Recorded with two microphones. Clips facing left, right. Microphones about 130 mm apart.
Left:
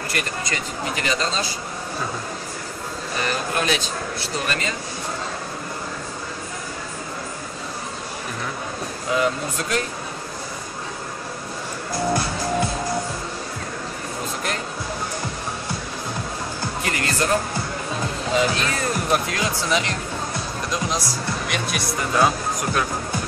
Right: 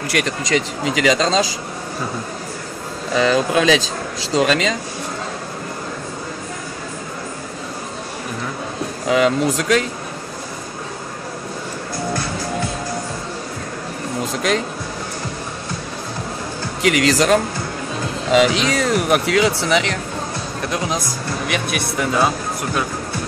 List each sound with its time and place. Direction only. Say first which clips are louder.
0.1 s speech: right 10 dB; 85° right
3.2 s speech: right 9 dB; 90° right
9.1 s speech: right 6 dB; 85° right
14.4 s speech: right 10 dB; 90° right
16.8 s speech: right 10 dB; 90° right; by 20.0 s 70° right (ahead or behind)
20.7 s speech: right 2 dB; 55° right (ahead or behind)